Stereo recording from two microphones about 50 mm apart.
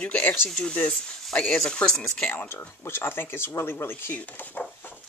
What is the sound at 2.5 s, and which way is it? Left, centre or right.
Speech, left.